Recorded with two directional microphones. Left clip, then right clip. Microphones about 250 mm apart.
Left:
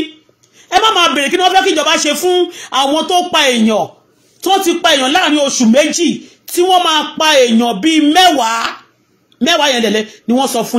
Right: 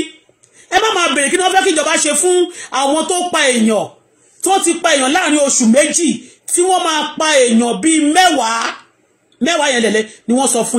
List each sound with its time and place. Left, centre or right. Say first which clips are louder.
0.7 s a man's voice: left 3 dB; left